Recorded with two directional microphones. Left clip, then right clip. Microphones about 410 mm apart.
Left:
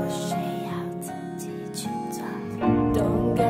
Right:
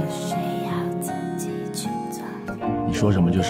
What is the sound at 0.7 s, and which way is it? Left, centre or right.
Music, right.